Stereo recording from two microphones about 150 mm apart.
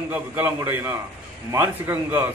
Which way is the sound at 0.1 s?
15° right (ahead or behind).